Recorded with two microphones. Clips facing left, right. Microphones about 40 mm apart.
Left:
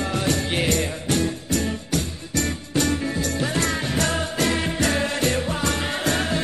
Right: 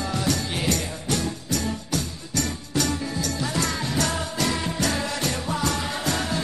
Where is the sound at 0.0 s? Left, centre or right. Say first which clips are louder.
Left 2 dB; left.